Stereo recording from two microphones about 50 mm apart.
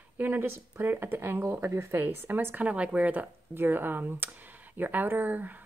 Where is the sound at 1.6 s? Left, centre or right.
Right.